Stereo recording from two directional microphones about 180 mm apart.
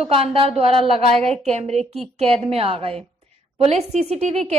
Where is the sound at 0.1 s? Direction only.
30° right (ahead or behind).